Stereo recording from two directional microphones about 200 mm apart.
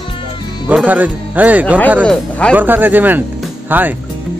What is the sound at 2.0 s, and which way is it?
Speech, 5° left (ahead or behind).